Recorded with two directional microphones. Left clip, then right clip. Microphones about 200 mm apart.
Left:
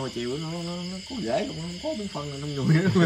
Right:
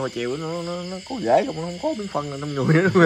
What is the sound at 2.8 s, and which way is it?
Speech, 5° left (ahead or behind).